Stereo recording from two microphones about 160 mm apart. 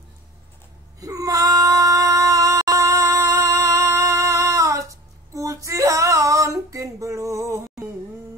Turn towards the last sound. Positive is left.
turn(degrees=-20)  # may be behind; listen again after turning